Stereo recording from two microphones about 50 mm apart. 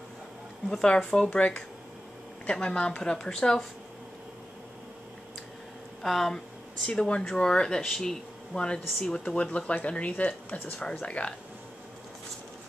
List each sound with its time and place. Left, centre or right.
0.8 s speech: centre
3.0 s speech: centre
6.0 s speech: centre
6.9 s speech: centre